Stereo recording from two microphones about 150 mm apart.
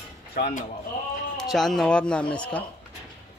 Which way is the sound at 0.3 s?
75° left (ahead or behind).